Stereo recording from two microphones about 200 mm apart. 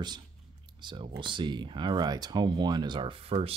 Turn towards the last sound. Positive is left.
turn(degrees=-25)  # may be behind; listen again after turning